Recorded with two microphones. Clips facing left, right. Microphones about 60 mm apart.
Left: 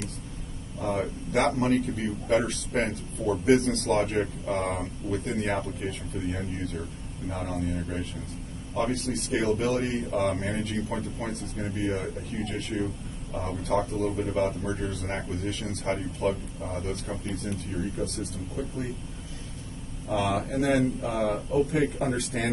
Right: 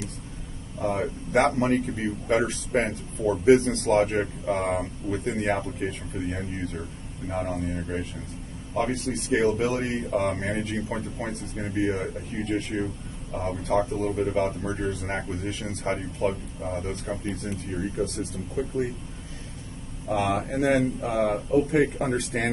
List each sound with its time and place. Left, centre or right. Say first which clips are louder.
0.8 s speech: right 2 dB; centre
1.3 s speech: right 2 dB; right
20.2 s a man's voice: right 1 dB; right